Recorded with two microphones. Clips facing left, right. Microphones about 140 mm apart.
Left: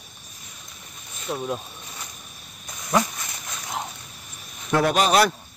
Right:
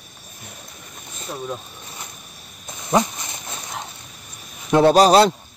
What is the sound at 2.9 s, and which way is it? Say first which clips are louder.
Dog: right 3 dB; 25° right (ahead or behind).